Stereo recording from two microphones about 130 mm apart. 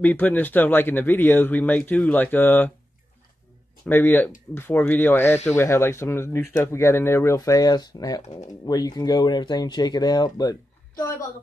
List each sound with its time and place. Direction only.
0.0 s speech: 15° left (ahead or behind)
3.8 s speech: 15° left (ahead or behind)